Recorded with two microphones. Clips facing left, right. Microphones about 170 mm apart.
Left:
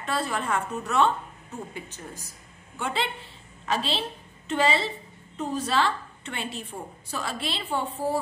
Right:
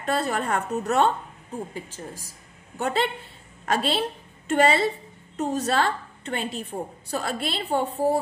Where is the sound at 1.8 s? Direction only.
90° right.